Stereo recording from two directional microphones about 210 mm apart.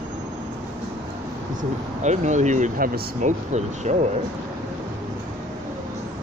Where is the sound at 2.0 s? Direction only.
35° right (ahead or behind).